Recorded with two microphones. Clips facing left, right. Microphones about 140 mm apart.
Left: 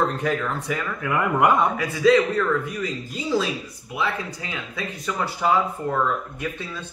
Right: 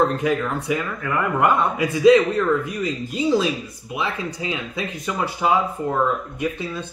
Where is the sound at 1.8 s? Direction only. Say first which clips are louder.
Right 4 dB; 20° right (ahead or behind).